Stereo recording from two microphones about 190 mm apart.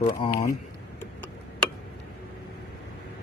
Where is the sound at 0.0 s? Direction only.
20° left (ahead or behind).